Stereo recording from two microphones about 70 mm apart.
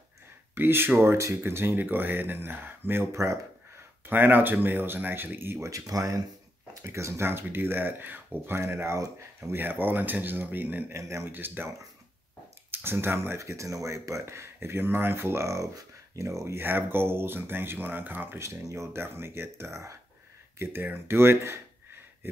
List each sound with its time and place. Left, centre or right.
0.6 s speech: right
5.7 s speech: right
6.8 s speech: right
7.2 s speech: right
10.9 s speech: right
11.2 s speech: right
12.8 s speech: right
16.5 s speech: right
18.4 s speech: right
20.5 s speech: right